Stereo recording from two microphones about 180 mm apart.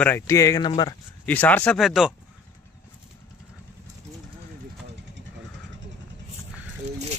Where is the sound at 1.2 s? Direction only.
10° left (ahead or behind).